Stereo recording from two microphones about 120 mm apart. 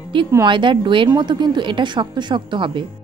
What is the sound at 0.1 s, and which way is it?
A woman's voice, 45° right (ahead or behind).